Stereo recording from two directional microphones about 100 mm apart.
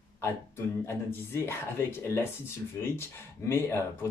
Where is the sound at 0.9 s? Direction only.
25° left (ahead or behind).